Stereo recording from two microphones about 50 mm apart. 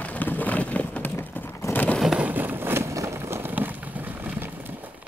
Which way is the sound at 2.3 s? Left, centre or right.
Right.